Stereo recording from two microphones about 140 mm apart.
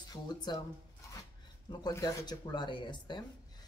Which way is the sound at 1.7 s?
30° left (ahead or behind).